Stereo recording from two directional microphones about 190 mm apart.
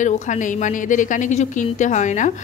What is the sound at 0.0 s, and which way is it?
A woman's voice, 40° left (ahead or behind).